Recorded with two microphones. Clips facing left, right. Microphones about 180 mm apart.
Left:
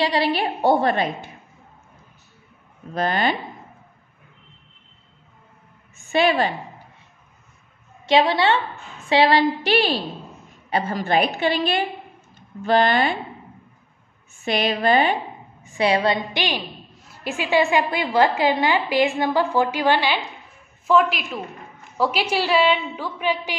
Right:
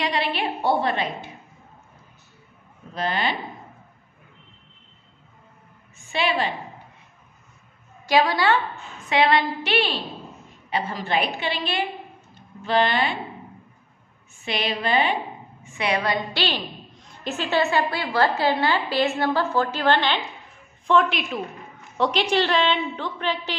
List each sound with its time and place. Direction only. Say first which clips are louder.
0.0 s a woman's voice: left 4 dB; 35° left (ahead or behind)
2.9 s a woman's voice: left 4 dB; 50° left (ahead or behind)
6.1 s a woman's voice: left 5 dB; 45° left (ahead or behind)
8.1 s a woman's voice: left 2 dB; 25° left (ahead or behind); by 13.1 s 45° left (ahead or behind)
14.4 s a woman's voice: left 5 dB; 45° left (ahead or behind)
15.6 s a woman's voice: left 5 dB; 30° left (ahead or behind)
16.3 s a woman's voice: left 1 dB; 10° left (ahead or behind)